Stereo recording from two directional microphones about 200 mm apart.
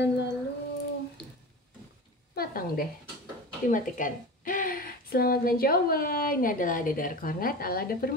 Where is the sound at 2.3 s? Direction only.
45° left (ahead or behind).